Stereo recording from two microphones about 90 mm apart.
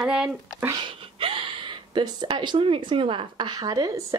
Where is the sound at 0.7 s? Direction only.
70° right (ahead or behind).